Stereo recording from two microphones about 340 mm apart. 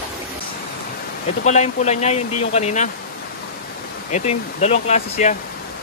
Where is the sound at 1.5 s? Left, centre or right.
Centre.